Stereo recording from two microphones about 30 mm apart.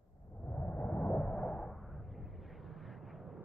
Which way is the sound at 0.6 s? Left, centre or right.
Left.